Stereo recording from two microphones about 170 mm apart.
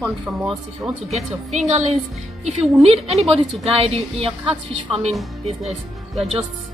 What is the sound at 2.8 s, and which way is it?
A woman's voice, 35° right (ahead or behind).